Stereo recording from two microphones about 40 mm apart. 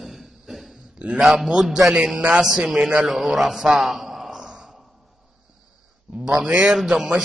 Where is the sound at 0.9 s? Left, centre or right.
Right.